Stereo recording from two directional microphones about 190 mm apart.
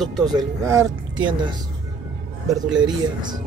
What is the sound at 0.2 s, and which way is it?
Speech, 20° right (ahead or behind).